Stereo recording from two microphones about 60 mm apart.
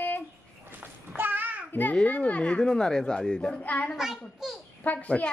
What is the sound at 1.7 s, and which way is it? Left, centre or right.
Speech, left.